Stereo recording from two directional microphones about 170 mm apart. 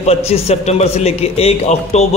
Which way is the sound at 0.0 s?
35° left (ahead or behind).